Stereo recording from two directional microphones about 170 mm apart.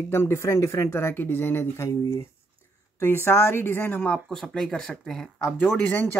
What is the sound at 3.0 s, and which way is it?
Speech, 15° left (ahead or behind).